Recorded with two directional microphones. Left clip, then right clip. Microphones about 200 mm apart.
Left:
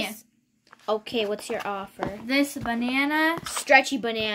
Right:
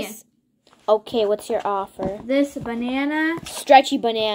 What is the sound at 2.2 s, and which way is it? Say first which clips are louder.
Speech: right 3 dB; 50° left (ahead or behind).